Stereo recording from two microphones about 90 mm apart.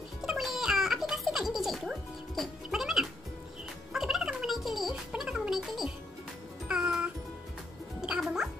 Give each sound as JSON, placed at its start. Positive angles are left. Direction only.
{"t": 0.2, "sound": "music", "side_deg": -5}
{"t": 3.9, "sound": "gargling", "side_deg": -5}
{"t": 5.1, "sound": "music", "side_deg": -10}